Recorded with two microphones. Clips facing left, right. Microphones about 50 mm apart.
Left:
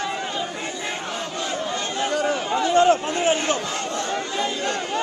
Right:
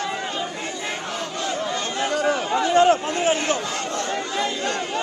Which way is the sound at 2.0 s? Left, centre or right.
Right.